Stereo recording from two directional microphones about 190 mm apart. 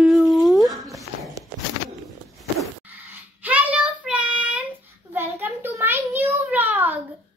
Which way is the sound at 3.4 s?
10° right (ahead or behind).